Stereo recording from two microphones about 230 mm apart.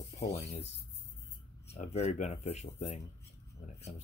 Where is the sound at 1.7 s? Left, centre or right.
Left.